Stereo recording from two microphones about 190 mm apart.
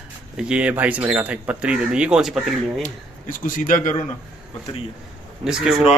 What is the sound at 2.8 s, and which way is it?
Speech, 45° left (ahead or behind).